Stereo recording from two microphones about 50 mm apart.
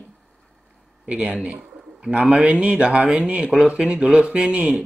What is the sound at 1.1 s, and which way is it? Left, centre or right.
Speech, right.